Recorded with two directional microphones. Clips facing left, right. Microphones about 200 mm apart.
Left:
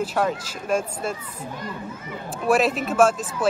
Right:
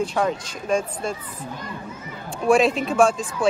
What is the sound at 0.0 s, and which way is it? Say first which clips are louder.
Speech: right 1 dB; 5° left (ahead or behind).